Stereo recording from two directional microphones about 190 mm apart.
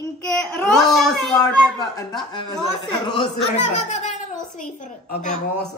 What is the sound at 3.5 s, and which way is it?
Speech, 35° left (ahead or behind).